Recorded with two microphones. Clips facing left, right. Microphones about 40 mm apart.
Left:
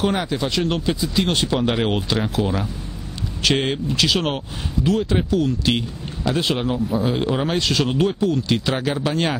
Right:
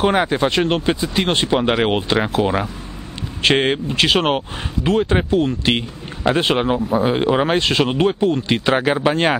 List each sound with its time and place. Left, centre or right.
0.0 s a man's voice: right